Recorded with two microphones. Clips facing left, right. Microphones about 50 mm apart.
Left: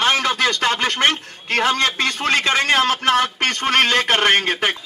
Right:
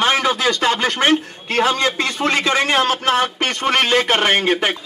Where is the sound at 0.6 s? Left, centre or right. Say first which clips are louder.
Right 1 dB; left.